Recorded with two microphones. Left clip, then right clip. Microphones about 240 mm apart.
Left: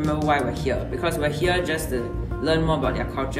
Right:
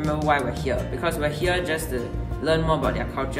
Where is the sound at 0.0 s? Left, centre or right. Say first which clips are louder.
Even; centre.